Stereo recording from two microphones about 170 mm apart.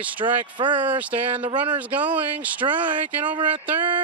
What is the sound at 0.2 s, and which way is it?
Speech, 30° right (ahead or behind).